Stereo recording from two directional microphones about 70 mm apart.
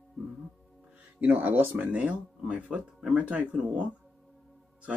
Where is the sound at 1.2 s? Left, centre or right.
Right.